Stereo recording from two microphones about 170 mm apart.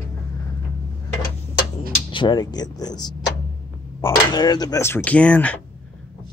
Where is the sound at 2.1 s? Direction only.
25° left (ahead or behind); by 5.6 s 5° left (ahead or behind).